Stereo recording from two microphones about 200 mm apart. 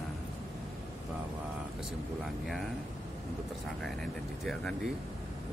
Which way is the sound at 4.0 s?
Centre (ahead or behind).